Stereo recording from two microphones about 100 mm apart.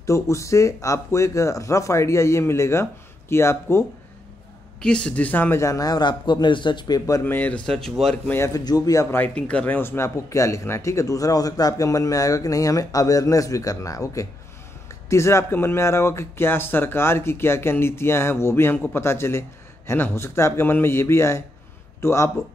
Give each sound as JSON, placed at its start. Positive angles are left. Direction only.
{"t": 0.0, "sound": "speech", "side_deg": 30}
{"t": 4.7, "sound": "speech", "side_deg": 10}
{"t": 5.6, "sound": "a man's voice", "side_deg": 35}
{"t": 7.2, "sound": "speech", "side_deg": 15}
{"t": 7.6, "sound": "speech", "side_deg": 5}
{"t": 8.5, "sound": "speech", "side_deg": 40}
{"t": 9.1, "sound": "speech", "side_deg": 15}